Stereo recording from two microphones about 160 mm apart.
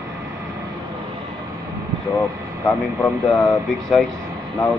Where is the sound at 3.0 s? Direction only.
20° left (ahead or behind).